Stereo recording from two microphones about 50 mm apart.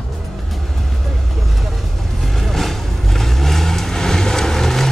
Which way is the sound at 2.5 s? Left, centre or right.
Centre.